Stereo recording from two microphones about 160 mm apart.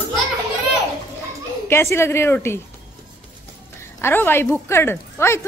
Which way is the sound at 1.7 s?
15° left (ahead or behind).